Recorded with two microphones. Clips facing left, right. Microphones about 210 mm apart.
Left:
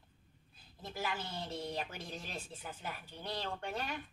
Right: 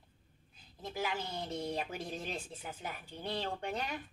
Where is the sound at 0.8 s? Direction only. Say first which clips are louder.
Right 3 dB; 15° right (ahead or behind).